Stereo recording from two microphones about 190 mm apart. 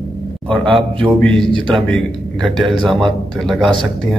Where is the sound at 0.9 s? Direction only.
25° right (ahead or behind).